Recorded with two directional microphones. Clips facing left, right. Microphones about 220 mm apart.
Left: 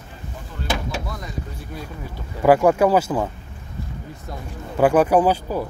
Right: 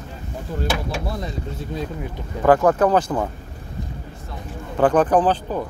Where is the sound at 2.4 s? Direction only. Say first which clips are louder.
Left 1 dB; 10° left (ahead or behind).